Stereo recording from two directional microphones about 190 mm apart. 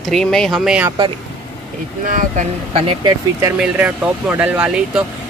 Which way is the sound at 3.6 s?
5° right (ahead or behind).